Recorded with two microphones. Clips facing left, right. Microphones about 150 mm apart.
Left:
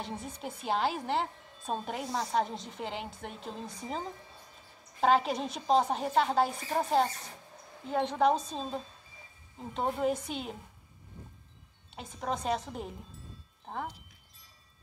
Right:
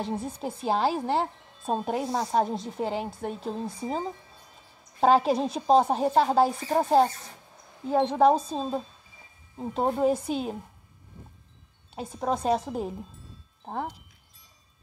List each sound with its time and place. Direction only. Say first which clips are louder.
0.2 s a woman's voice: right 8 dB; 30° right (ahead or behind)
5.0 s a woman's voice: right 6 dB; 35° right (ahead or behind)
11.9 s a woman's voice: right 7 dB; 35° right (ahead or behind)